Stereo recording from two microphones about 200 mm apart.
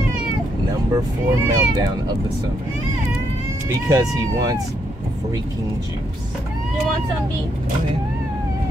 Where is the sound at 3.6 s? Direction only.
15° right (ahead or behind).